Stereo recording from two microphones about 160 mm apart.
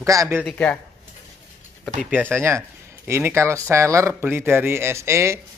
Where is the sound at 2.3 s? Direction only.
15° right (ahead or behind).